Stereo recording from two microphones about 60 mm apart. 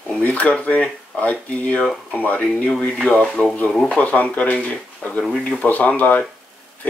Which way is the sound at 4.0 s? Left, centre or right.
Left.